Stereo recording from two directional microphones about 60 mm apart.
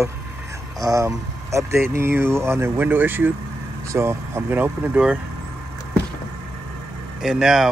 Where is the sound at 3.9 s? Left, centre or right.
Right.